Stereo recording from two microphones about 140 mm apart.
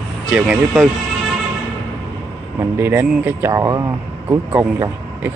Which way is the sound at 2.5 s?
15° right (ahead or behind).